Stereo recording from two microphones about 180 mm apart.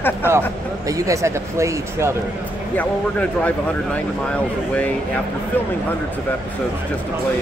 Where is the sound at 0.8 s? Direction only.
20° right (ahead or behind).